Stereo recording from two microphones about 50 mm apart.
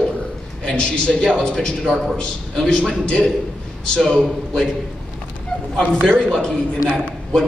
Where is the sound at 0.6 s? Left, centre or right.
Centre.